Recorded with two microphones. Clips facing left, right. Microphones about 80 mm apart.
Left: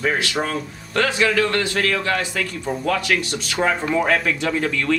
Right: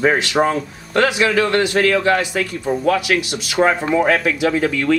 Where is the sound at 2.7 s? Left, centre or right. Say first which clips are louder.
Right 4 dB; centre.